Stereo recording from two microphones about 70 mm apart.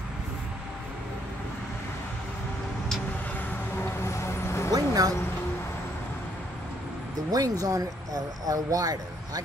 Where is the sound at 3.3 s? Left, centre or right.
Left.